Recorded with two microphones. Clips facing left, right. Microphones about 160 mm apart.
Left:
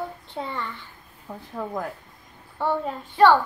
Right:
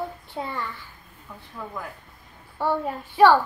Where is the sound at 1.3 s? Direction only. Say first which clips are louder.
Left 6 dB; 35° left (ahead or behind).